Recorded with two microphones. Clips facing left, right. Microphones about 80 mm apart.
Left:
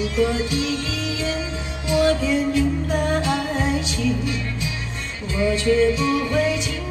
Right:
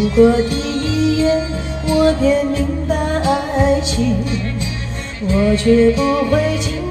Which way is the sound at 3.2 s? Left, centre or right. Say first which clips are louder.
Right 7 dB; right.